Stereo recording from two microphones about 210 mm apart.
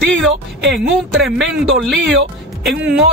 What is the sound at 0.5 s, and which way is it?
Speech, 55° right (ahead or behind).